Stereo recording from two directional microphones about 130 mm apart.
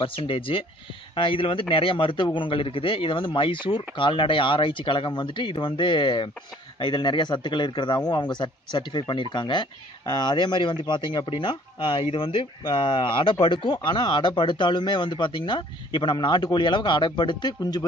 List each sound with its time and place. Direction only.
0.0 s speech: 45° left (ahead or behind)